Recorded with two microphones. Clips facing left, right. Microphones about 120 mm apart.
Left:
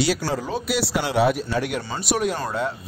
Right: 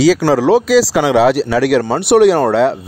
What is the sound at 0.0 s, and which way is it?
Speech, 90° right.